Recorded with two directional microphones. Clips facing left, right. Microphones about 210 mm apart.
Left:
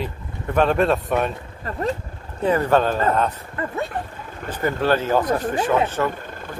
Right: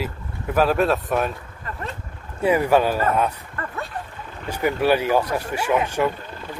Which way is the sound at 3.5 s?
20° left (ahead or behind).